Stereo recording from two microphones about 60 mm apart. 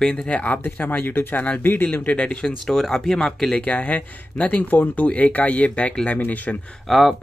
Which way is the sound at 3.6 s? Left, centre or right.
Left.